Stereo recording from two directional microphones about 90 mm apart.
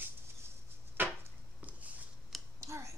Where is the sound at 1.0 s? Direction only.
20° right (ahead or behind).